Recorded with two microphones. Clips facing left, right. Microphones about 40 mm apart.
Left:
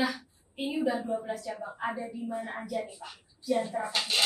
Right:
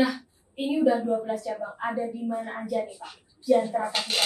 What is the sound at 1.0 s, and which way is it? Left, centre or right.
Speech, centre.